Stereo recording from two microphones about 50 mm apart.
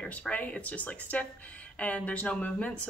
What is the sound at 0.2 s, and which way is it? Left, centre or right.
Speech, left.